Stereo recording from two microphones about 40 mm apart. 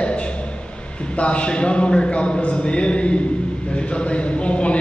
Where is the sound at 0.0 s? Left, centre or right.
Left.